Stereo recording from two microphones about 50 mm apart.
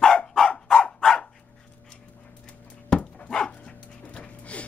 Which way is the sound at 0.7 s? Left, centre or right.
Centre.